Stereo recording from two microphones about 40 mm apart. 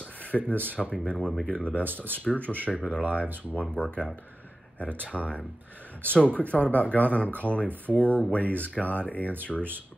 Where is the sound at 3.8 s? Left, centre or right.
Left.